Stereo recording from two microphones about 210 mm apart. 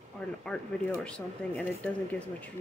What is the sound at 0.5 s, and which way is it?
Speech, 5° left (ahead or behind).